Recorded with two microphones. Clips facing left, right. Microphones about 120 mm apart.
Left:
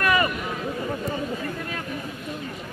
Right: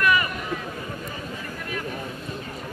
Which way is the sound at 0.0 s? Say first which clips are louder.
Even; 35° left (ahead or behind).